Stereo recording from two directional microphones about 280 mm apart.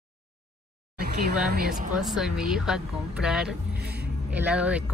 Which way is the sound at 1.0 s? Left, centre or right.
Right.